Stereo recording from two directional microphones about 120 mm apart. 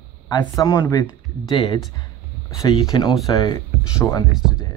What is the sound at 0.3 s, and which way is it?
Speech, 35° left (ahead or behind).